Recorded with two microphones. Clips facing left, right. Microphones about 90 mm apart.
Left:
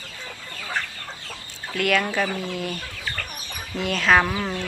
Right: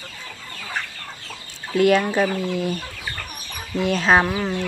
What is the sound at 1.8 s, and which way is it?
Speech, 25° right (ahead or behind).